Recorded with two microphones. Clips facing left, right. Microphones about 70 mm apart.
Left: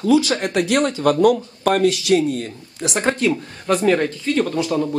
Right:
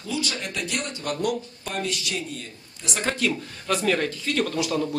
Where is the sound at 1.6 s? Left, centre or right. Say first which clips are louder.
Left 13 dB; left.